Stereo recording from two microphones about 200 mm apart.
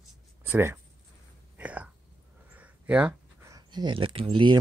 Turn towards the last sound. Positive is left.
turn(degrees=-25)  # may be behind; listen again after turning